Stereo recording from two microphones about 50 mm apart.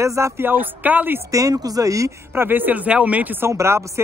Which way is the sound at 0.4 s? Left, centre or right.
Right.